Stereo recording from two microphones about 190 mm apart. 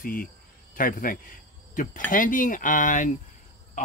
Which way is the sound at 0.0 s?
50° left (ahead or behind).